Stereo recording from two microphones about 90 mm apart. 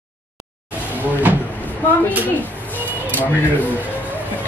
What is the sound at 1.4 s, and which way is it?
Cupboard open or close, 20° left (ahead or behind).